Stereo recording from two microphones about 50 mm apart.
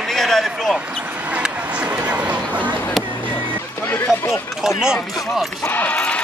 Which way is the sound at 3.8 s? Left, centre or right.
Left.